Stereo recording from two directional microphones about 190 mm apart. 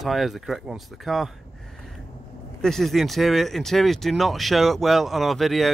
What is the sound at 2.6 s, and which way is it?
Speech, centre (ahead or behind).